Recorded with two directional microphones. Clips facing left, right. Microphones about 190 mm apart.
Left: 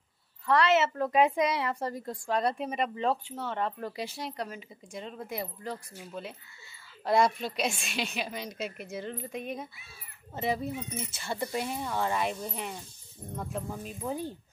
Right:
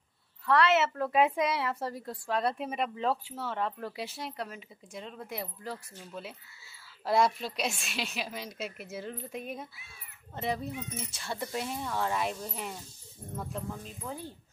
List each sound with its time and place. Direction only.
0.5 s a woman's voice: centre (ahead or behind)
13.8 s speech: 15° left (ahead or behind)